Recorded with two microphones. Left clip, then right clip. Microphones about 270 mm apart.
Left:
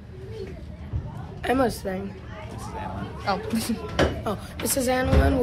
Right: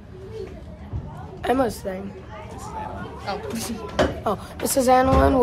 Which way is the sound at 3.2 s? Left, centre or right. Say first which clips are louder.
Left 3 dB; centre.